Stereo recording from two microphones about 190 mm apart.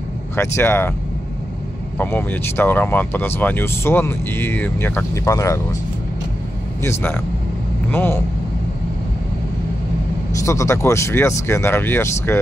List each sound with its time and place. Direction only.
0.4 s speech: 10° left (ahead or behind)
2.0 s speech: 10° left (ahead or behind)
6.8 s speech: 10° left (ahead or behind)
10.4 s speech: 15° left (ahead or behind)